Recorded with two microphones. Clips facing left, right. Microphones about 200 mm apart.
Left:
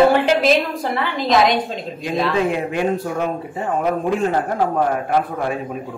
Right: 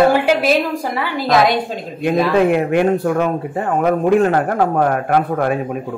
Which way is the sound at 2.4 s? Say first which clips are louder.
Right 6 dB; 60° right (ahead or behind).